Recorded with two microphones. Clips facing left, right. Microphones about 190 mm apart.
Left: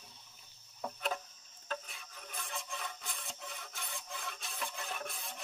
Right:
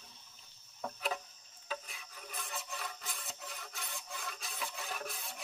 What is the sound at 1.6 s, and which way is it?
Music, centre (ahead or behind).